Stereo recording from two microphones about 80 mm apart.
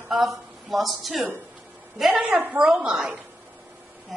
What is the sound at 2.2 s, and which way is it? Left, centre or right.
Speech, centre.